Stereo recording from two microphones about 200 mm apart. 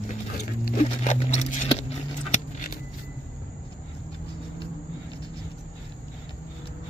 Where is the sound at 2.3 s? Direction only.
40° left (ahead or behind).